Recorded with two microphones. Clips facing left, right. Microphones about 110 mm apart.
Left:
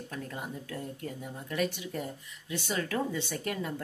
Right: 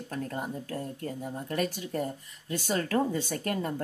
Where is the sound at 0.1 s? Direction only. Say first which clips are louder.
Right 6 dB; 40° right (ahead or behind).